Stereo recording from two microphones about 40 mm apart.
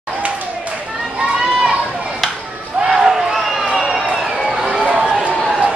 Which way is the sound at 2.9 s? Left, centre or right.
Centre.